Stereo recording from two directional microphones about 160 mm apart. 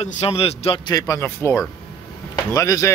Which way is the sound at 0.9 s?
20° left (ahead or behind).